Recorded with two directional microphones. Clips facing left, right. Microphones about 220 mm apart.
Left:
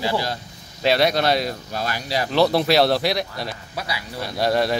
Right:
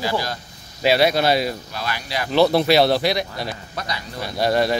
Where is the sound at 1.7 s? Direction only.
40° left (ahead or behind).